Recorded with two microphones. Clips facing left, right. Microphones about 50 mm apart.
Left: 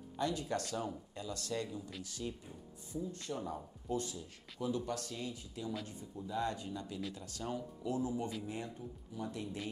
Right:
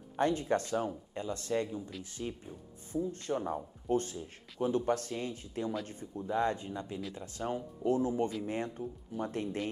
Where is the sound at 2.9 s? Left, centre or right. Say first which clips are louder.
Right 7 dB; right.